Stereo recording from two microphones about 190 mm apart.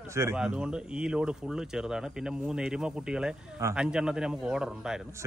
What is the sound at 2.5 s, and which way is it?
Speech, 5° right (ahead or behind).